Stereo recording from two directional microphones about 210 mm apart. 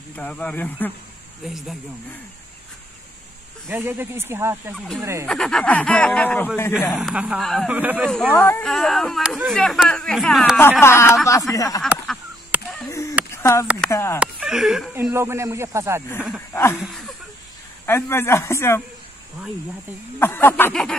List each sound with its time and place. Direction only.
0.1 s speech: 5° left (ahead or behind)
3.6 s speech: 10° right (ahead or behind)
4.7 s speech: centre (ahead or behind)
7.0 s speech: 5° right (ahead or behind)
8.1 s speech: 5° left (ahead or behind)
10.8 s speech: 10° left (ahead or behind)
11.8 s honk: 5° right (ahead or behind)
12.7 s a sound: 15° left (ahead or behind)
13.8 s speech: 15° left (ahead or behind)
14.2 s speech: 5° right (ahead or behind)
16.8 s a sound: centre (ahead or behind)
17.8 s speech: 10° left (ahead or behind)
20.2 s speech: 10° left (ahead or behind)